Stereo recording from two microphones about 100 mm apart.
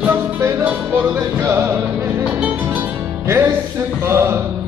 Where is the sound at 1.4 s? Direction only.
25° right (ahead or behind).